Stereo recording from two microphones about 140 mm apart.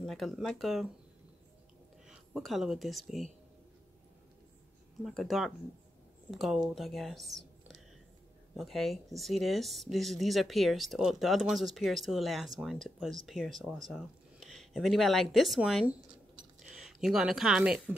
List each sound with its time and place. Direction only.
0.0 s speech: centre (ahead or behind)
2.0 s speech: centre (ahead or behind)
5.0 s speech: centre (ahead or behind)